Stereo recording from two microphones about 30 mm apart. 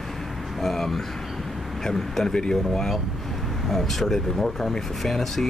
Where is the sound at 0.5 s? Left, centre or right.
Centre.